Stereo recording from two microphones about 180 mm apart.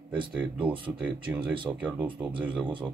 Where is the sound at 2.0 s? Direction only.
25° right (ahead or behind).